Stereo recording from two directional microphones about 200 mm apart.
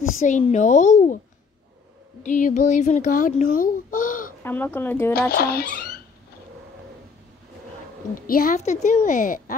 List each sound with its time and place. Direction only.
0.2 s a woman's voice: 35° left (ahead or behind)
2.2 s a woman's voice: 40° left (ahead or behind)
4.4 s speech: 10° left (ahead or behind)
5.3 s speech: 50° left (ahead or behind)
8.1 s a woman's voice: 45° left (ahead or behind)